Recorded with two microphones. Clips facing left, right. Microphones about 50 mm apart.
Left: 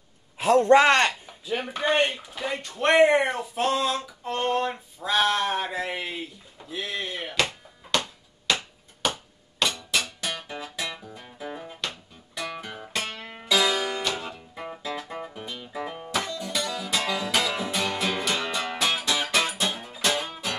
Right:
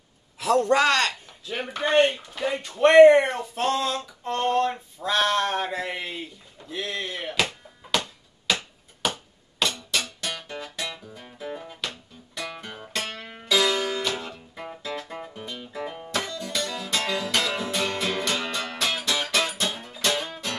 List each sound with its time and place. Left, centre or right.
0.4 s a man's voice: left
1.8 s speech: centre
8.5 s a sound: centre
9.6 s music: centre